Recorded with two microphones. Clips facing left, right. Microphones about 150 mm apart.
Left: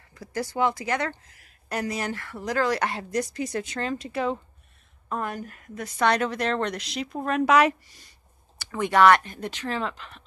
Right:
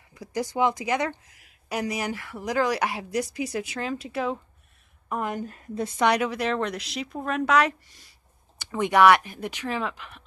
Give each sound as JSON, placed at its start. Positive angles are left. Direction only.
{"t": 0.1, "sound": "speech", "side_deg": -15}
{"t": 5.1, "sound": "a woman's voice", "side_deg": -20}
{"t": 5.9, "sound": "speech", "side_deg": -10}
{"t": 8.5, "sound": "speech", "side_deg": -15}